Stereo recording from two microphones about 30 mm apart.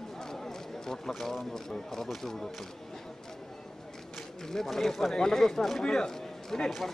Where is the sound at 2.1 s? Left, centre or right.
Centre.